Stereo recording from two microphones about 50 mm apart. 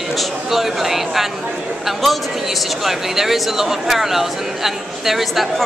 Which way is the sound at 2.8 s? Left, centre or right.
Centre.